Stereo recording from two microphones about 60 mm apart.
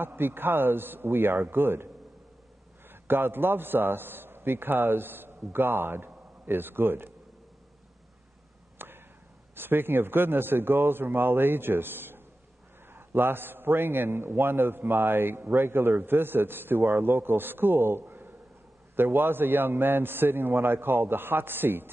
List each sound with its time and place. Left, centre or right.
0.0 s a man's voice: right
2.9 s a man's voice: right
8.7 s a sound: right
9.6 s a man's voice: right